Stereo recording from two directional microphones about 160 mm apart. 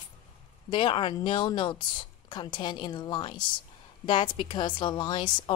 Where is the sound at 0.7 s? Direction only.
30° left (ahead or behind).